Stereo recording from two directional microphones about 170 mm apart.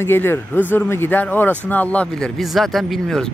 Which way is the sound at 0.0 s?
15° left (ahead or behind).